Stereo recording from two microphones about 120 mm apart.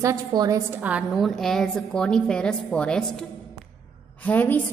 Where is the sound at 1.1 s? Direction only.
Centre (ahead or behind).